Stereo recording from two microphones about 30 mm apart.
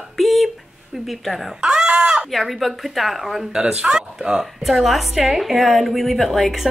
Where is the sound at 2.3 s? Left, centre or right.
Centre.